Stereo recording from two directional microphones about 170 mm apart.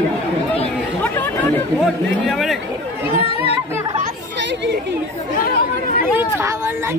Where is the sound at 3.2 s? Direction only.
35° left (ahead or behind).